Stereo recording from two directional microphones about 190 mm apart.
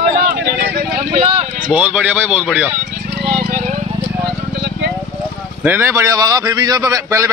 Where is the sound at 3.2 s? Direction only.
45° right (ahead or behind).